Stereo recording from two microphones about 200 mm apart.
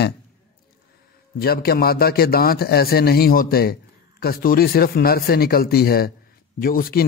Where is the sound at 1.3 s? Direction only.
50° left (ahead or behind).